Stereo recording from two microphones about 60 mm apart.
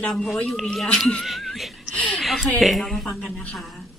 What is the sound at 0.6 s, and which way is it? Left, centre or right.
A woman's voice, centre.